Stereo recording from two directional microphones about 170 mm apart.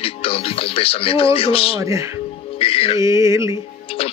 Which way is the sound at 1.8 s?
20° right (ahead or behind).